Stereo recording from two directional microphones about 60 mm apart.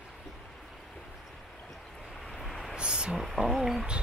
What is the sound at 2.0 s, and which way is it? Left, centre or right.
Vehicle, centre.